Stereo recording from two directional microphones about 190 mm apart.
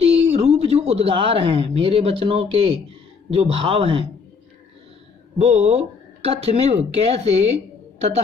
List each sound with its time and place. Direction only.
0.0 s a sound: 30° right (ahead or behind)
1.8 s speech: 30° right (ahead or behind)
5.4 s speech: 35° right (ahead or behind)